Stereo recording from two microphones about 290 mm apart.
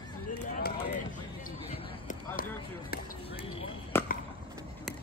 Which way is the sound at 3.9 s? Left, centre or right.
Centre.